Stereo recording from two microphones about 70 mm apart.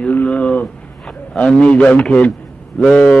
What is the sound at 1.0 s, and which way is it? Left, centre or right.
A man's voice, centre.